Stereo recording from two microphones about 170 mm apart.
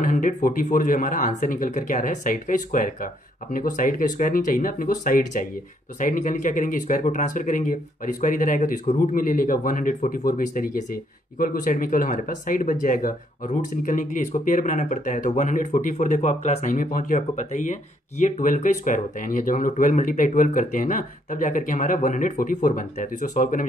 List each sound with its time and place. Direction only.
0.0 s speech: 50° left (ahead or behind)